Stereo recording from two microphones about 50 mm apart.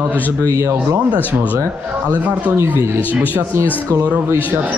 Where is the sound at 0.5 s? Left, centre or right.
Right.